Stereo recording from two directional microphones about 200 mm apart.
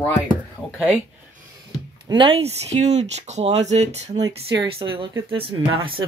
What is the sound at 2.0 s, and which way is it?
Speech, 25° right (ahead or behind).